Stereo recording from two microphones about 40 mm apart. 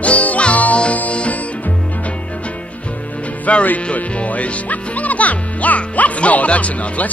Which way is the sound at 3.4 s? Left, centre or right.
Left.